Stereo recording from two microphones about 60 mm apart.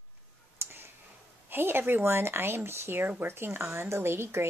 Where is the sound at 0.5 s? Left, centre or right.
Right.